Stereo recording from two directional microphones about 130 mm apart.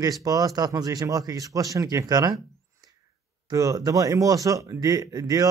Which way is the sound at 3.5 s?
25° right (ahead or behind).